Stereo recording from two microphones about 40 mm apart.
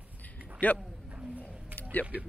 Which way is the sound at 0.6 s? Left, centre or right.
Left.